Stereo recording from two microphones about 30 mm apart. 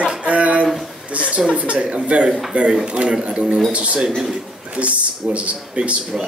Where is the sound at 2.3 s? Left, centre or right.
Centre.